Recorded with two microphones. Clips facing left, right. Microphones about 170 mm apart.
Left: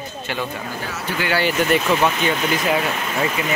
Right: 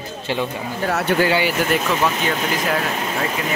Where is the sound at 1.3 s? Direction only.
5° right (ahead or behind).